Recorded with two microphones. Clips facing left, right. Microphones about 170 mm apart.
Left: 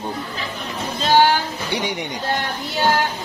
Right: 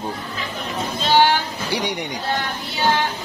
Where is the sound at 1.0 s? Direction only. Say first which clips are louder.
Left 1 dB; 45° left (ahead or behind).